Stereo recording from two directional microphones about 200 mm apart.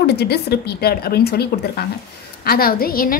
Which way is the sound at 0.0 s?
55° left (ahead or behind).